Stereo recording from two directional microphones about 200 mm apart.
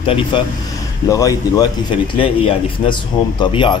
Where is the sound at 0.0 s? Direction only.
25° left (ahead or behind).